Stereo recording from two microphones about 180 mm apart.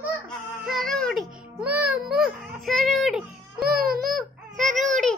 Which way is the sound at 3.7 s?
55° right (ahead or behind).